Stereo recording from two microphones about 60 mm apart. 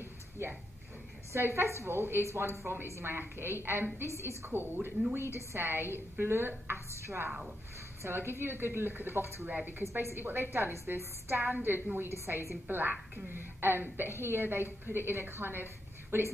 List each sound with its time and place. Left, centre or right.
1.3 s a woman's voice: right
8.0 s a woman's voice: right
11.5 s a woman's voice: right
12.3 s a woman's voice: right
12.6 s a woman's voice: right